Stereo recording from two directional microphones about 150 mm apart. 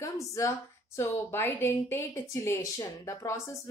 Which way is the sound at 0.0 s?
20° left (ahead or behind).